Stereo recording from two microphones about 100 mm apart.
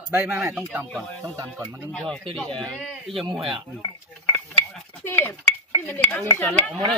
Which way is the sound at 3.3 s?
55° right (ahead or behind).